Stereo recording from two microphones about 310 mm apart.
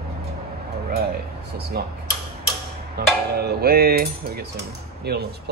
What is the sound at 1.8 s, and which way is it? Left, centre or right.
Cutlery, right.